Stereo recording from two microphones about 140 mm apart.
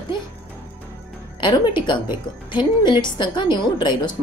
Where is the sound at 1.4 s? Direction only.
30° left (ahead or behind).